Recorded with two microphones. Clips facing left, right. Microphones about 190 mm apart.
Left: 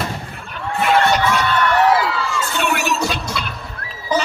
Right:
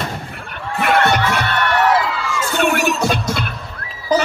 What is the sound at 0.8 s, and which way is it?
Music, 60° right (ahead or behind).